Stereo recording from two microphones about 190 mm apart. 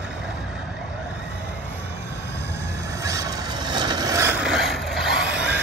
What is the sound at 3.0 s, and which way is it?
Vehicle, 15° right (ahead or behind).